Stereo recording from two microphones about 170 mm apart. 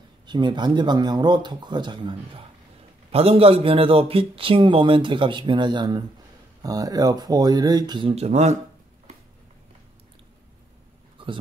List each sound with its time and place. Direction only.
0.3 s speech: 25° right (ahead or behind)
8.1 s speech: 40° right (ahead or behind)
11.2 s a sound: 30° right (ahead or behind)